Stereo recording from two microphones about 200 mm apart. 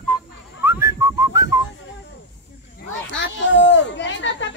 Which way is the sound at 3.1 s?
65° left (ahead or behind).